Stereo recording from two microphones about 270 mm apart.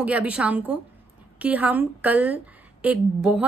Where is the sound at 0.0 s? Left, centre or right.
Centre.